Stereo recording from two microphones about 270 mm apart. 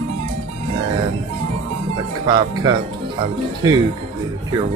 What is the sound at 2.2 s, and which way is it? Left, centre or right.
Speech, centre.